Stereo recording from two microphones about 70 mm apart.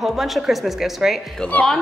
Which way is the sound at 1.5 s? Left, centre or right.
Left.